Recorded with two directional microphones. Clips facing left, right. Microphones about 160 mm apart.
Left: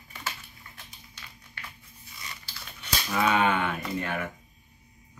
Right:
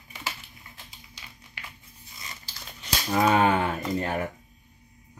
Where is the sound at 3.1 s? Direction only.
35° right (ahead or behind).